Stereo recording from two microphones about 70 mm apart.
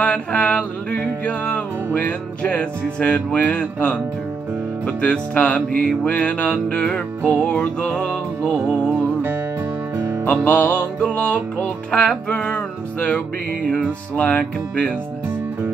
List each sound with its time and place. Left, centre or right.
0.0 s music: centre
10.3 s music: left